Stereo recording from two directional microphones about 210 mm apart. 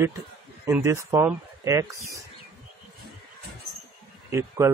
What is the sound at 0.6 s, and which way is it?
Speech, 15° right (ahead or behind).